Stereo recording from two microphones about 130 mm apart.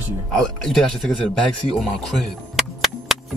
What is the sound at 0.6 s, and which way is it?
Speech, centre (ahead or behind).